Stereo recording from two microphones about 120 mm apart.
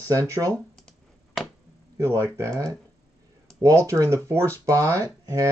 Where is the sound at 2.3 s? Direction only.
25° right (ahead or behind).